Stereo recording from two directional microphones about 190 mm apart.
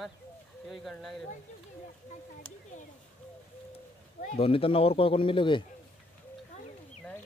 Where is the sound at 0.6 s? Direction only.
Centre (ahead or behind).